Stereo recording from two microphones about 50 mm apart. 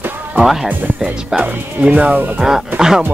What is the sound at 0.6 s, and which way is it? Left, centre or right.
Speech, right.